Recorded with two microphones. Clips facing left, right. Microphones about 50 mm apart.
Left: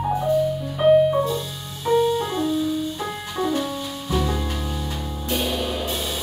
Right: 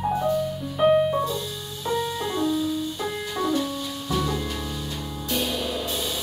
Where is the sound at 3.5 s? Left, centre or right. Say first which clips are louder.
Left 1 dB; left.